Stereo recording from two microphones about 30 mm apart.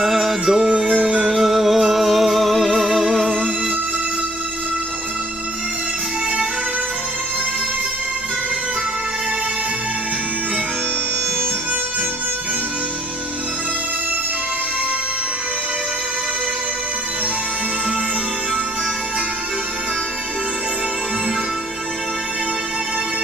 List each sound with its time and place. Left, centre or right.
0.0 s music: centre
0.7 s music: right
1.3 s music: centre